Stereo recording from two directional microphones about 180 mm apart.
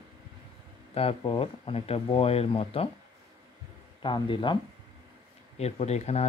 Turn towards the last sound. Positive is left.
turn(degrees=35)  # may be behind; listen again after turning